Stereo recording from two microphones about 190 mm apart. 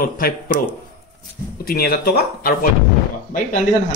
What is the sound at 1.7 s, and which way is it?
Speech, 55° left (ahead or behind).